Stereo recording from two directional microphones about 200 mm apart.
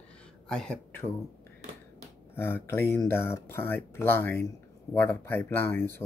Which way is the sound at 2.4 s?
10° left (ahead or behind).